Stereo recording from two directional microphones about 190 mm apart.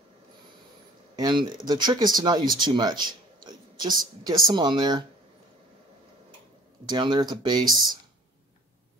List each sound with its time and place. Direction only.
1.1 s a man's voice: 25° right (ahead or behind)
6.9 s speech: 25° right (ahead or behind)